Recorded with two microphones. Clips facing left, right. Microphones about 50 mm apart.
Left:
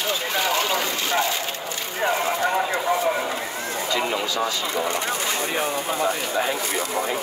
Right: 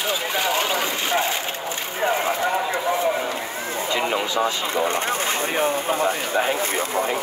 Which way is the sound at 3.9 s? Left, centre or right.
Right.